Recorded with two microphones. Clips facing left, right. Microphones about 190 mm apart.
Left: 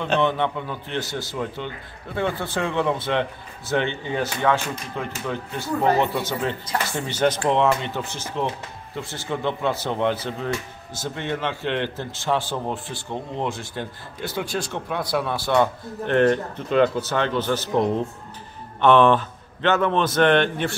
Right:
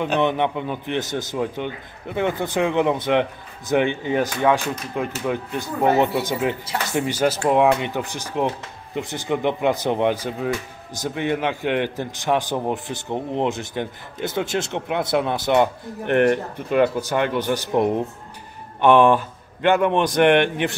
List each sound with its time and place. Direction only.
0.0 s a man's voice: 15° right (ahead or behind)